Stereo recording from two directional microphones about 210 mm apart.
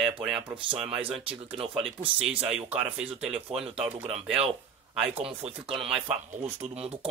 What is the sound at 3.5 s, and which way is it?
Speech, 30° right (ahead or behind).